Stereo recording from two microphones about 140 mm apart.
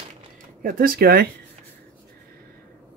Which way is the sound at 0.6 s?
90° right.